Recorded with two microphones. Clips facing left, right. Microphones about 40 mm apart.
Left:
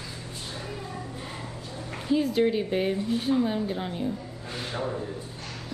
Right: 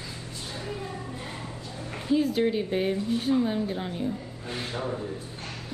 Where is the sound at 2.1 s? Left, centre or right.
Centre.